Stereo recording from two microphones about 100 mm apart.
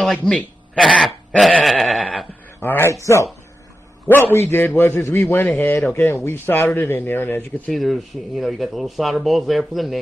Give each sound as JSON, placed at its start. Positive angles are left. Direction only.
{"t": 0.0, "sound": "a man's voice", "side_deg": 0}
{"t": 0.9, "sound": "dog", "side_deg": 10}
{"t": 1.6, "sound": "goat", "side_deg": 0}
{"t": 2.6, "sound": "speech", "side_deg": 20}
{"t": 7.7, "sound": "speech", "side_deg": 0}